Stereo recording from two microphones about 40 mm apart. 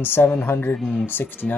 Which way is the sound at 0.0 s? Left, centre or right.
Left.